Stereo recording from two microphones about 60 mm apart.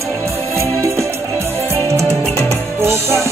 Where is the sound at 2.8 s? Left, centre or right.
Right.